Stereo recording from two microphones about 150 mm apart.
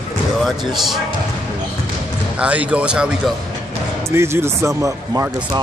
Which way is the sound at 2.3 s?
10° right (ahead or behind).